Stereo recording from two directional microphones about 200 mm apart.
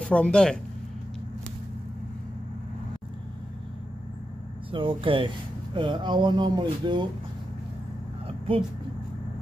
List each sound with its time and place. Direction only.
0.0 s speech: 5° left (ahead or behind)
4.6 s speech: 25° right (ahead or behind)